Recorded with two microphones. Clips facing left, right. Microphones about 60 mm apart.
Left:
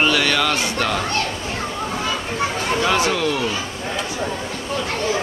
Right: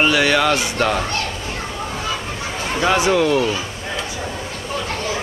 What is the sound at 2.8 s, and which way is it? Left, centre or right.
Speech, centre.